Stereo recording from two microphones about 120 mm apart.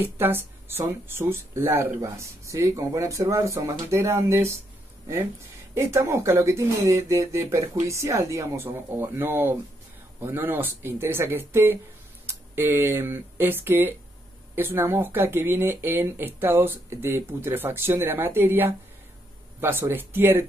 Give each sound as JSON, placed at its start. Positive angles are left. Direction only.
{"t": 0.0, "sound": "speech", "side_deg": -15}
{"t": 5.8, "sound": "speech", "side_deg": -20}